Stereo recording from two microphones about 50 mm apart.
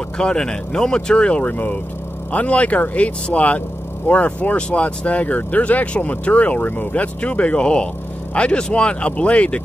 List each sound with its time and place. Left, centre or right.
0.2 s speech: centre